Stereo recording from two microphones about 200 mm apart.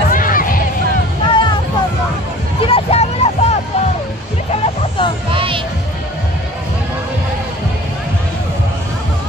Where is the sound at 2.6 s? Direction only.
25° left (ahead or behind).